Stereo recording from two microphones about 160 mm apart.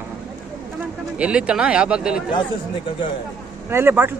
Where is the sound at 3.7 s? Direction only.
15° right (ahead or behind).